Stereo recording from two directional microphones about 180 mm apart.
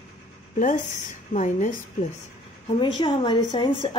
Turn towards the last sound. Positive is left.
turn(degrees=30)  # may be behind; listen again after turning